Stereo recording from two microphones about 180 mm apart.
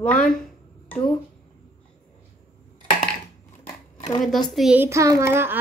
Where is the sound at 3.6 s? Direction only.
15° left (ahead or behind).